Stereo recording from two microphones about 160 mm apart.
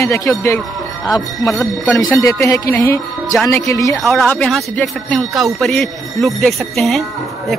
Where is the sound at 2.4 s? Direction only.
20° left (ahead or behind).